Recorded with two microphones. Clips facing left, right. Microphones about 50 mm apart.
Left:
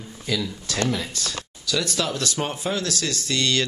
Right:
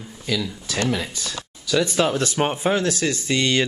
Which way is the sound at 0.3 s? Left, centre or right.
Centre.